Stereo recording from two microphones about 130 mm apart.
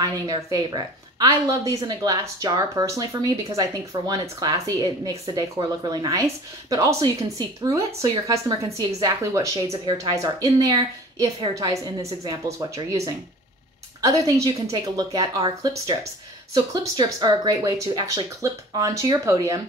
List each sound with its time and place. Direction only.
0.0 s a woman's voice: 30° right (ahead or behind)
14.0 s a woman's voice: 25° right (ahead or behind)